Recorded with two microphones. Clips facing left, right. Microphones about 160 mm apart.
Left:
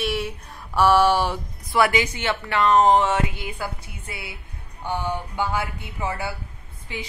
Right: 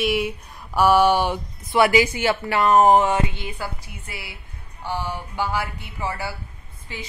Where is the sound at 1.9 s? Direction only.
10° right (ahead or behind).